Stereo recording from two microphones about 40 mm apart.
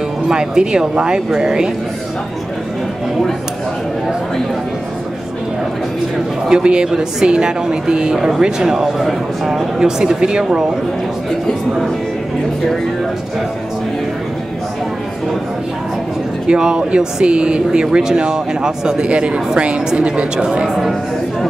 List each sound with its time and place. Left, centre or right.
0.3 s speech: centre
6.5 s speech: right
16.4 s speech: centre